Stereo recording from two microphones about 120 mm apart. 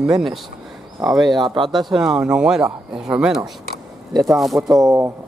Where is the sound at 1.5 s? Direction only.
45° right (ahead or behind).